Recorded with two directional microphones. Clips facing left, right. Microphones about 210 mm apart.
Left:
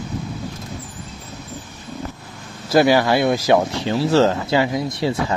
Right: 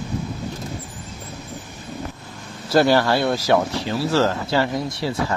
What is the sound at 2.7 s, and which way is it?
Speech, 10° left (ahead or behind).